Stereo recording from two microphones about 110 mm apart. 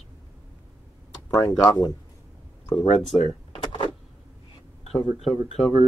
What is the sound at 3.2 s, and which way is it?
Door, 55° left (ahead or behind).